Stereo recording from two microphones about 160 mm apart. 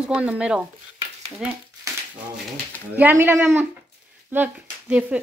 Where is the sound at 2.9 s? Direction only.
10° right (ahead or behind).